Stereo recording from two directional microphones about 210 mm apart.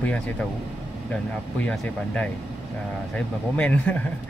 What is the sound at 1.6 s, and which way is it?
Speech, 5° left (ahead or behind).